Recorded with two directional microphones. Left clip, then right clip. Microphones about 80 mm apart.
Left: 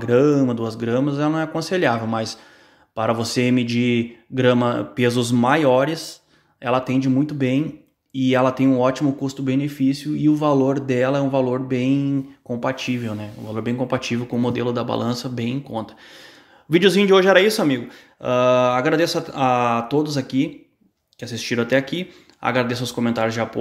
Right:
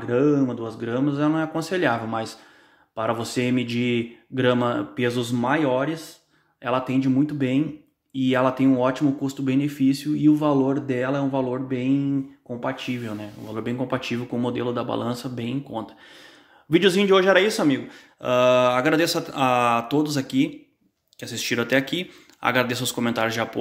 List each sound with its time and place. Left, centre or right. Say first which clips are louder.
0.0 s speech: left 4 dB; left
0.8 s speech: left 2 dB; left
4.9 s speech: left 5 dB; left
6.6 s speech: left 3 dB; left
9.2 s speech: left 1 dB; centre
10.4 s speech: left 3 dB; left
13.0 s speech: left 3 dB; left